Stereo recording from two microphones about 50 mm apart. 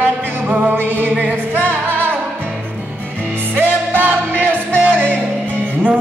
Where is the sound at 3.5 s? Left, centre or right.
Right.